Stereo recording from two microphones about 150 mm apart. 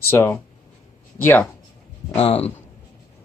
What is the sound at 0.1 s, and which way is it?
Speech, 15° left (ahead or behind).